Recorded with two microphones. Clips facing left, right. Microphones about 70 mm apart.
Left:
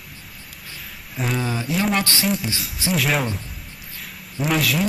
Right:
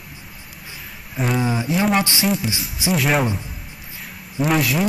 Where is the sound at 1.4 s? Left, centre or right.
Centre.